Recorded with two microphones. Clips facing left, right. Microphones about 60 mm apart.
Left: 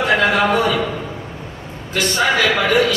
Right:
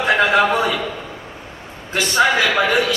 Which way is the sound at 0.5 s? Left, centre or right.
Left.